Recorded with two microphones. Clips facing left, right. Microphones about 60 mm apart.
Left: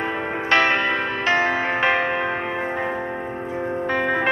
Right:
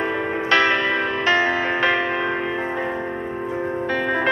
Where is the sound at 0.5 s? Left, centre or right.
Left.